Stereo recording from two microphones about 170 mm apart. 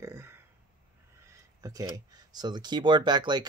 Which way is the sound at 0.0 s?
15° right (ahead or behind).